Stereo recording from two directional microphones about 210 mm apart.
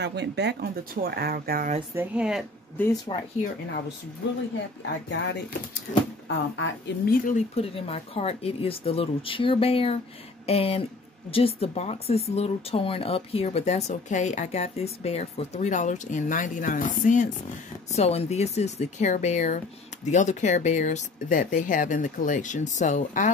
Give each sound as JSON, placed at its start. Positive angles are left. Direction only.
{"t": 0.0, "sound": "speech", "side_deg": -55}
{"t": 2.0, "sound": "speech", "side_deg": -5}
{"t": 3.1, "sound": "speech", "side_deg": 25}
{"t": 5.1, "sound": "speech", "side_deg": 60}
{"t": 7.1, "sound": "speech", "side_deg": 35}